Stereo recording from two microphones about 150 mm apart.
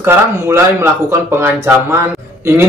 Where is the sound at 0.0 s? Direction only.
15° right (ahead or behind).